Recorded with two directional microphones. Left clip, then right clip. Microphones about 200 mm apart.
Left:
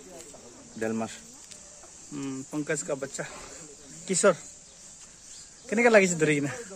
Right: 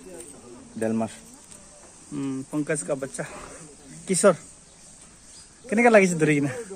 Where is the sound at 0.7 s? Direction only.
30° right (ahead or behind).